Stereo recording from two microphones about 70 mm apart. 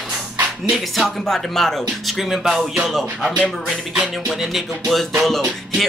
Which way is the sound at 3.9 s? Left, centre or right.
Centre.